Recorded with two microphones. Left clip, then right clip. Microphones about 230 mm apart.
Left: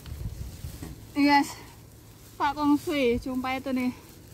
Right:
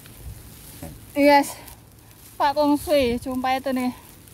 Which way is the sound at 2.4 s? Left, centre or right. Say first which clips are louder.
Right 5 dB; right.